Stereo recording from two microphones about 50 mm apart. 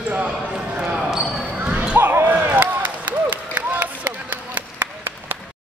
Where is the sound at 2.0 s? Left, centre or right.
Right.